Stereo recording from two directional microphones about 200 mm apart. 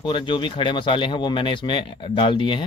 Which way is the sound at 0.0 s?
25° left (ahead or behind).